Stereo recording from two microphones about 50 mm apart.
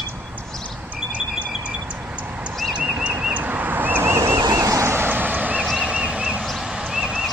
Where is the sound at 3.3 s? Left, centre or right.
Right.